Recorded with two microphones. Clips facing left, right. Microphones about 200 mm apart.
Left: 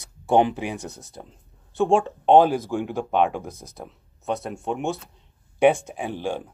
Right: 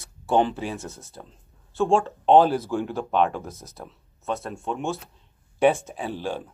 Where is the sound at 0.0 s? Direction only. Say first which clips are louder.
Left 2 dB; 15° left (ahead or behind).